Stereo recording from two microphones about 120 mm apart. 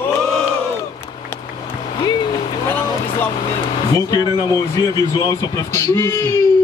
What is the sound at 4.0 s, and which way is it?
Speech, 35° left (ahead or behind).